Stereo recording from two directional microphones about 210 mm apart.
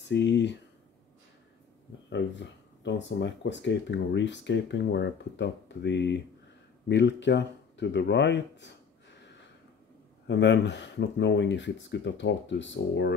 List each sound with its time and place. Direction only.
0.1 s speech: 55° left (ahead or behind)
2.0 s speech: 55° left (ahead or behind)
10.2 s speech: 60° left (ahead or behind)